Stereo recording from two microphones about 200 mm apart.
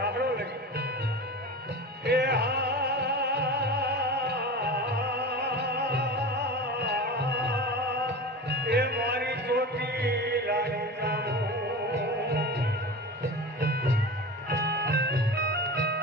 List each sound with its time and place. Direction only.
0.0 s music: 55° right (ahead or behind)
2.0 s music: 55° right (ahead or behind)